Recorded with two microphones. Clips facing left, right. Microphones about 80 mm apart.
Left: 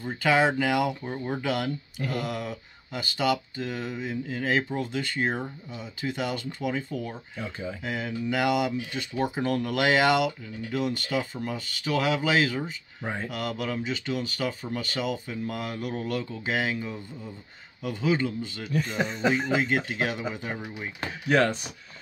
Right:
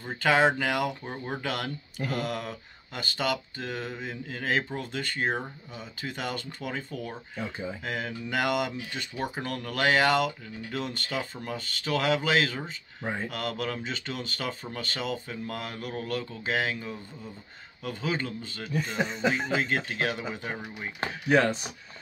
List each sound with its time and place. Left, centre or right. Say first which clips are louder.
0.2 s speech: even; centre
1.0 s speech: left 3 dB; centre
1.4 s speech: left 4 dB; centre
7.4 s speech: left 1 dB; centre
7.8 s speech: left 6 dB; centre
9.1 s speech: left 7 dB; left
13.0 s speech: even; centre
13.3 s speech: left 1 dB; centre
18.7 s speech: left 1 dB; centre
21.3 s speech: even; centre